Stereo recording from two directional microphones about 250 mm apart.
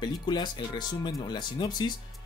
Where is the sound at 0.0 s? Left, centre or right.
Centre.